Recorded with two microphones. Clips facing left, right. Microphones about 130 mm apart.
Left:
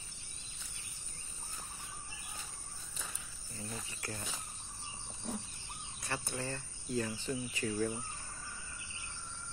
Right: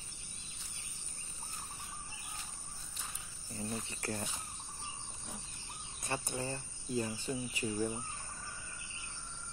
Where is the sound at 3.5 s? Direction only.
35° right (ahead or behind).